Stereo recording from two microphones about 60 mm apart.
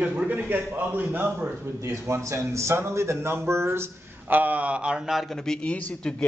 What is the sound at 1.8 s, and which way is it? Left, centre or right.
Speech, right.